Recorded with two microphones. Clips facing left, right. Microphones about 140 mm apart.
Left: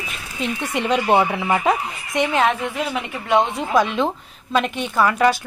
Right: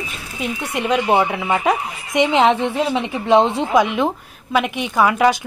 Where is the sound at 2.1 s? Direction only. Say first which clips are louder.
Right 4 dB; 20° right (ahead or behind).